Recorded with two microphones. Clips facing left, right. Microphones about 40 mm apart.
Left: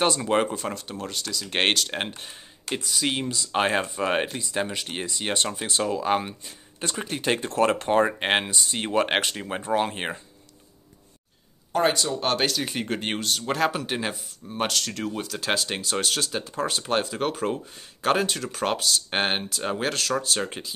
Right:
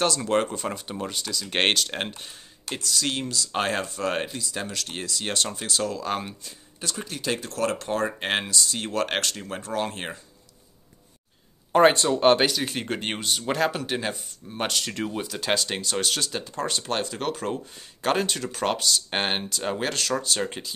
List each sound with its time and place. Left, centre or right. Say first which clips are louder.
0.2 s speech: left 1 dB; centre
2.0 s speech: left 1 dB; centre
6.8 s speech: left 3 dB; left
11.7 s speech: right 5 dB; right
12.4 s speech: right 1 dB; centre
14.9 s speech: even; centre